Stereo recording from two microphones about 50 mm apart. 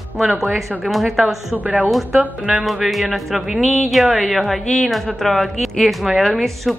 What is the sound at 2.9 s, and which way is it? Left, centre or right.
Speech, centre.